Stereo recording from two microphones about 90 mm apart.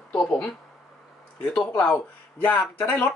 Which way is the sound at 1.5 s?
10° left (ahead or behind).